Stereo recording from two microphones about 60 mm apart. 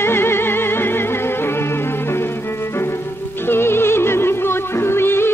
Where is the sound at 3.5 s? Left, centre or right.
Left.